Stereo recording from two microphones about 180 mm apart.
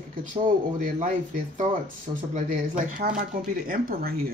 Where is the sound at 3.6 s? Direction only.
55° right (ahead or behind).